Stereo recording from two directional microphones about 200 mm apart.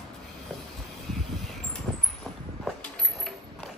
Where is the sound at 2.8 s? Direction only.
Centre (ahead or behind).